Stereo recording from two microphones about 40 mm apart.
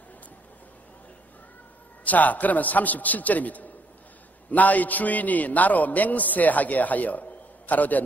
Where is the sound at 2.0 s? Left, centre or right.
Left.